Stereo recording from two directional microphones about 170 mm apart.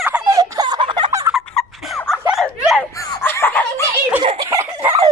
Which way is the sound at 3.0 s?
20° left (ahead or behind).